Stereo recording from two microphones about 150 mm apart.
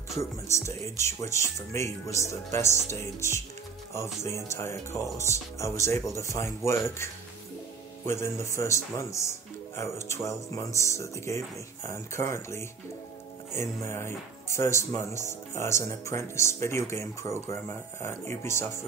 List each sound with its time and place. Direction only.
0.2 s speech: 20° left (ahead or behind)